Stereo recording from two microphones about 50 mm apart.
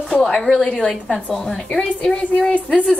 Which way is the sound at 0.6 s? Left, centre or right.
Centre.